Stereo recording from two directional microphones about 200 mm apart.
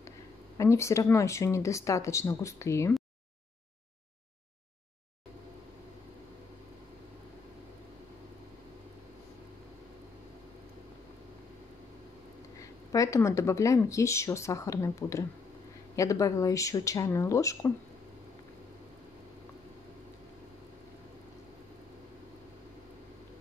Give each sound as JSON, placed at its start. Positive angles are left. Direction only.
{"t": 0.6, "sound": "speech", "side_deg": 15}
{"t": 12.5, "sound": "speech", "side_deg": 15}